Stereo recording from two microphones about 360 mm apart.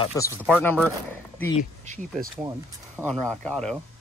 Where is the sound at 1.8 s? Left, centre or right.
Right.